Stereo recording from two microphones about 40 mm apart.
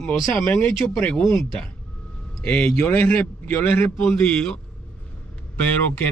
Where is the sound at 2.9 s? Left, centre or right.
Left.